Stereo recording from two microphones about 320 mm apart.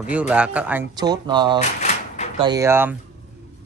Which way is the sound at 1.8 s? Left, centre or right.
Left.